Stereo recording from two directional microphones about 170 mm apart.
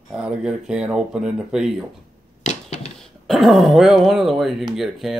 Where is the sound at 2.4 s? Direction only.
40° left (ahead or behind).